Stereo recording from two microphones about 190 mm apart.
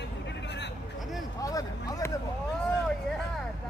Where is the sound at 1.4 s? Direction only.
20° left (ahead or behind).